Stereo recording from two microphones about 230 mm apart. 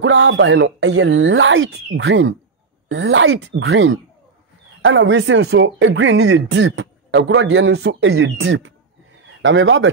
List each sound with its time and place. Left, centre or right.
0.0 s a woman's voice: right